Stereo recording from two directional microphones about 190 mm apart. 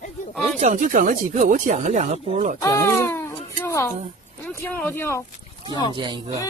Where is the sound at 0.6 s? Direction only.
45° right (ahead or behind).